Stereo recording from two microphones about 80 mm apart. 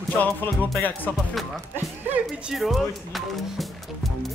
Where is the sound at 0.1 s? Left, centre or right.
Left.